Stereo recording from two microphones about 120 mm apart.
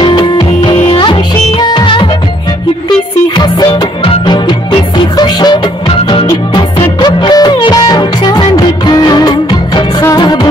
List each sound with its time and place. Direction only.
0.0 s music: 40° left (ahead or behind)
3.3 s music: 35° left (ahead or behind)